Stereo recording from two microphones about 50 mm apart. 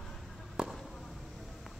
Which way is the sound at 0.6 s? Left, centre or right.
Centre.